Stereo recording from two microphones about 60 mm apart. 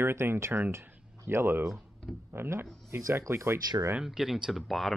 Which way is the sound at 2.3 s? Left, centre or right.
Right.